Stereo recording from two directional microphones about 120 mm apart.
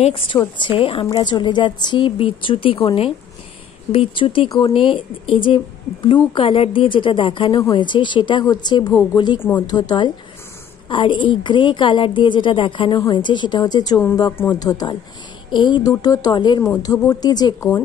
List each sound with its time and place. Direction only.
0.6 s a woman's voice: 45° left (ahead or behind)
1.0 s a woman's voice: 35° left (ahead or behind)
4.5 s speech: 30° left (ahead or behind)
4.7 s a woman's voice: 45° left (ahead or behind)
14.3 s speech: 20° left (ahead or behind)
14.6 s speech: 35° left (ahead or behind)